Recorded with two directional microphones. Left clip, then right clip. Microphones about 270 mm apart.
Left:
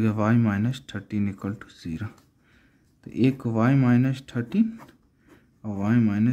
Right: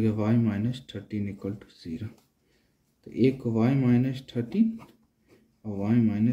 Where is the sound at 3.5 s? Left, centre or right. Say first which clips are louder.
Left 3 dB; left.